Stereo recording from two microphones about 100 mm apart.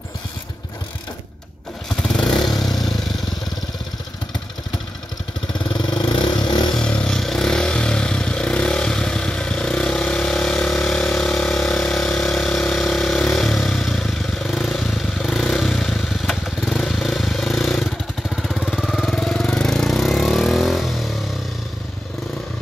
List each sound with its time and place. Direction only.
2.0 s motorcycle: 10° left (ahead or behind)
2.4 s vehicle: centre (ahead or behind)
5.7 s vehicle: 50° left (ahead or behind)
6.7 s motorcycle: 10° left (ahead or behind)
18.3 s vehicle: 5° left (ahead or behind)